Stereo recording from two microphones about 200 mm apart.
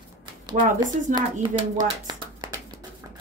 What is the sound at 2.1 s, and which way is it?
Clapping, 20° right (ahead or behind).